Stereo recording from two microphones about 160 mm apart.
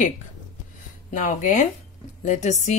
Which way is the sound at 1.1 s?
55° left (ahead or behind).